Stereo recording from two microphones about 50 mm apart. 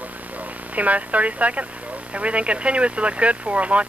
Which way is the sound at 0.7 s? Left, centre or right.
Right.